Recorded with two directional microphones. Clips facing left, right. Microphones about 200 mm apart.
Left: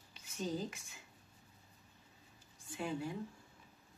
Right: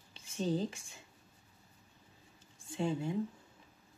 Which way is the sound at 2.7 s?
25° right (ahead or behind).